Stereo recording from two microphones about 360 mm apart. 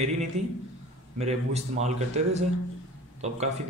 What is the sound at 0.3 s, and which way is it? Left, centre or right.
Speech, centre.